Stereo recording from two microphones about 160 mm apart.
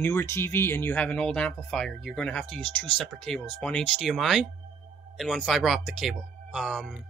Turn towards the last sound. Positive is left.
turn(degrees=0)  # may be behind; listen again after turning